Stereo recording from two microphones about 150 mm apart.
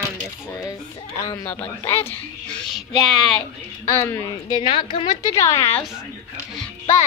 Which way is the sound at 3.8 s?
15° left (ahead or behind).